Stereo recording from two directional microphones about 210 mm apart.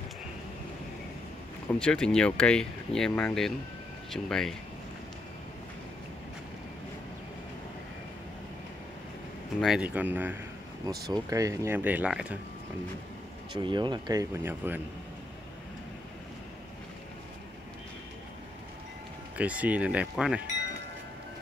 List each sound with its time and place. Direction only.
1.7 s speech: 5° left (ahead or behind)
9.6 s speech: 5° right (ahead or behind)
13.5 s speech: 20° right (ahead or behind)
19.3 s speech: 5° right (ahead or behind)